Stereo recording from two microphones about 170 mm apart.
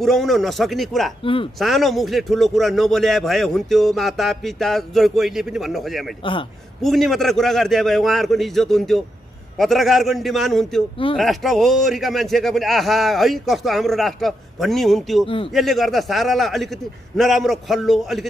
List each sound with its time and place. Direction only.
0.0 s a man's voice: centre (ahead or behind)
1.2 s speech: 30° left (ahead or behind)
1.6 s a man's voice: centre (ahead or behind)
15.2 s speech: 30° left (ahead or behind)
15.5 s a man's voice: centre (ahead or behind)